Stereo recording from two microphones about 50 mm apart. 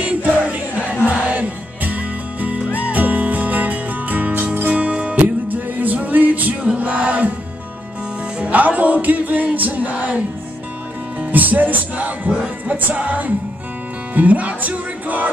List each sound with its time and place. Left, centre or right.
0.0 s music: right
8.4 s music: right
12.3 s music: centre
12.8 s music: right